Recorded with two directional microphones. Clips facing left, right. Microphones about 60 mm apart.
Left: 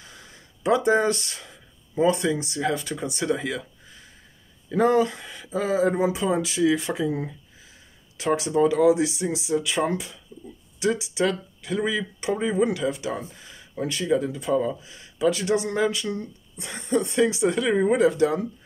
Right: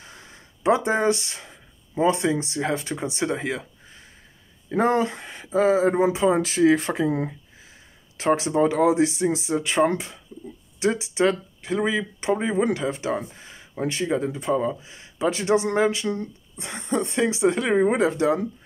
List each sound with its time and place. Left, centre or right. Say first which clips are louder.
0.7 s speech: even; right
4.6 s speech: left 1 dB; right
8.2 s speech: right 1 dB; right